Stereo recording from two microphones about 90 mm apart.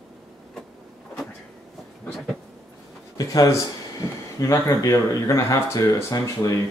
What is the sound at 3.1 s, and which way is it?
Speech, 40° left (ahead or behind).